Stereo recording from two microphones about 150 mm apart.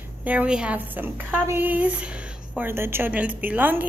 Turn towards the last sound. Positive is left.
turn(degrees=-10)  # may be behind; listen again after turning